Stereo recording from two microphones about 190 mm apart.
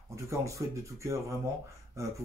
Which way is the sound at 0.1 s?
15° right (ahead or behind).